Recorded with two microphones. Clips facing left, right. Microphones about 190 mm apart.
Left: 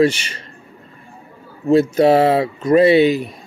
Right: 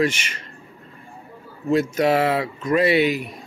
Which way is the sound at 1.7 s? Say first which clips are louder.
Left 6 dB; 30° left (ahead or behind).